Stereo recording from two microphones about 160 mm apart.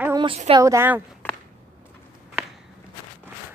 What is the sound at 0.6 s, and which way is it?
Speech, 15° right (ahead or behind).